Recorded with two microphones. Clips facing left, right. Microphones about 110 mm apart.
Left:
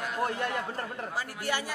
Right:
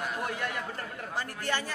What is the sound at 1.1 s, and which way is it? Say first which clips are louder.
Speech: right 1 dB; 10° left (ahead or behind).